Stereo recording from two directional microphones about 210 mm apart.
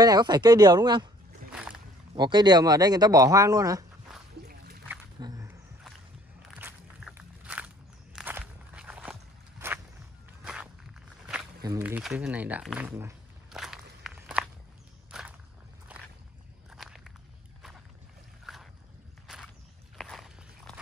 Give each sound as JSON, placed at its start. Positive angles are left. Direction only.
{"t": 0.0, "sound": "speech", "side_deg": -20}
{"t": 1.5, "sound": "a sound", "side_deg": -5}
{"t": 2.1, "sound": "speech", "side_deg": -20}
{"t": 4.4, "sound": "slosh", "side_deg": -45}
{"t": 5.2, "sound": "a sound", "side_deg": -15}
{"t": 6.6, "sound": "walk", "side_deg": -10}
{"t": 11.6, "sound": "speech", "side_deg": -15}
{"t": 14.0, "sound": "walk", "side_deg": -5}
{"t": 15.9, "sound": "squish", "side_deg": -5}
{"t": 16.7, "sound": "walk", "side_deg": 0}
{"t": 18.4, "sound": "boat", "side_deg": 0}
{"t": 19.3, "sound": "a sound", "side_deg": 0}
{"t": 20.0, "sound": "walk", "side_deg": 0}